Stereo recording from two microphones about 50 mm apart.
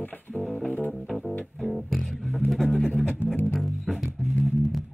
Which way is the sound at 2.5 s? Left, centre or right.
Centre.